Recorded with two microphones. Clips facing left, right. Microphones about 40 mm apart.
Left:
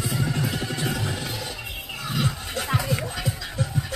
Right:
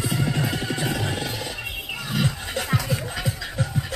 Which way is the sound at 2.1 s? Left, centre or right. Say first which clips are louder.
Right 2 dB; centre.